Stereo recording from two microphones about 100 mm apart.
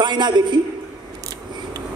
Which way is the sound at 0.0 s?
45° right (ahead or behind).